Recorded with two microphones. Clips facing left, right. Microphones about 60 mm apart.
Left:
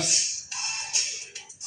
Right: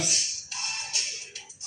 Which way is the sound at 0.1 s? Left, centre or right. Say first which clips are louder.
Even; centre.